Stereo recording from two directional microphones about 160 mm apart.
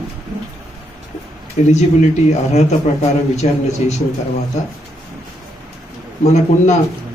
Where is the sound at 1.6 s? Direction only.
45° left (ahead or behind).